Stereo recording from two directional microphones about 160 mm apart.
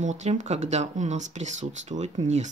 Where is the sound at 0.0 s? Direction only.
45° right (ahead or behind).